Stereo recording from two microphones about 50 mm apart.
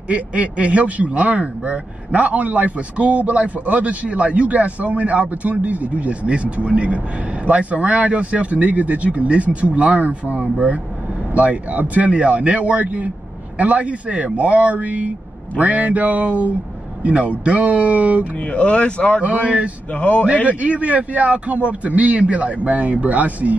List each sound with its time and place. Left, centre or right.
0.1 s a man's voice: right
18.4 s speech: left
19.2 s a man's voice: right
19.9 s speech: left
20.4 s a man's voice: right